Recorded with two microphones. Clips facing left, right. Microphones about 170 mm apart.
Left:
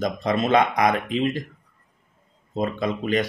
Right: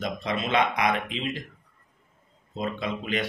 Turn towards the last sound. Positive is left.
turn(degrees=45)  # may be behind; listen again after turning